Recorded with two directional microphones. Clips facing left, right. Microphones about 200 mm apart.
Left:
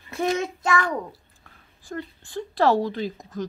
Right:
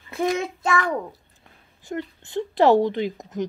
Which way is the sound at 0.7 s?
20° right (ahead or behind).